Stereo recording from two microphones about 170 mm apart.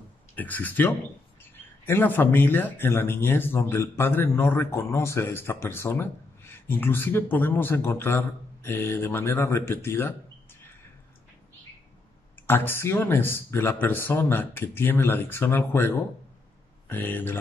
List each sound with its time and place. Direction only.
0.4 s speech: 10° left (ahead or behind)
12.4 s speech: 10° left (ahead or behind)
16.9 s speech: 10° left (ahead or behind)